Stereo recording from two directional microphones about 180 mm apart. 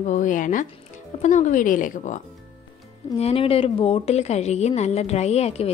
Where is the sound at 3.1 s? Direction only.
35° left (ahead or behind).